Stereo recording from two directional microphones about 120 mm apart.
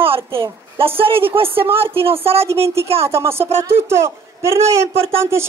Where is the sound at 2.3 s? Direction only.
20° right (ahead or behind).